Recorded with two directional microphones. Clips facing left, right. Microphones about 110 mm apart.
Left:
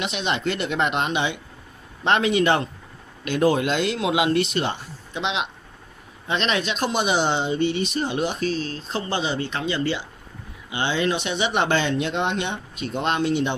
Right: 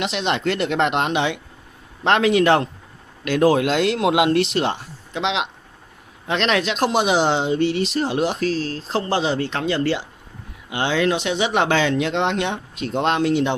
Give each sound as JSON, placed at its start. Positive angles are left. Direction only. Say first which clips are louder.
{"t": 0.0, "sound": "speech", "louder": "right 3 dB", "side_deg": -90}